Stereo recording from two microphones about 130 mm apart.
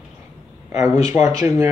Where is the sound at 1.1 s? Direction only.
25° right (ahead or behind).